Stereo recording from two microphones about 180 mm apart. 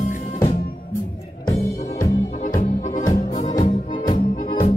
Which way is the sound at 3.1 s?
45° left (ahead or behind).